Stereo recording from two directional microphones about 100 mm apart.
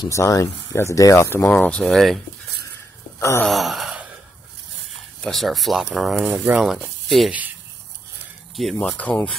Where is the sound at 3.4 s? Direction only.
Centre (ahead or behind).